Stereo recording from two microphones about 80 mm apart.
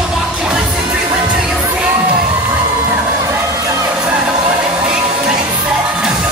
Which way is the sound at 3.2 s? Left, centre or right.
Right.